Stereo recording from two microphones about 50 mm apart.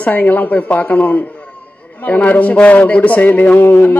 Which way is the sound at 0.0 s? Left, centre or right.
Left.